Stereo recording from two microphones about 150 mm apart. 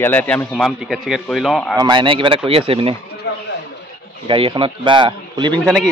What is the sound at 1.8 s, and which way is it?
A man's voice, 30° right (ahead or behind).